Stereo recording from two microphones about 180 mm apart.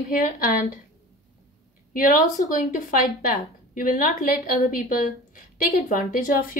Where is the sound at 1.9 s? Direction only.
50° left (ahead or behind).